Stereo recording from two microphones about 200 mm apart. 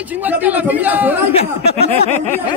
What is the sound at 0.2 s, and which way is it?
A man's voice, 10° right (ahead or behind).